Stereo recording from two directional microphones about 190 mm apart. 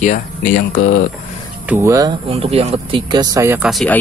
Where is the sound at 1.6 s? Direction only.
15° right (ahead or behind).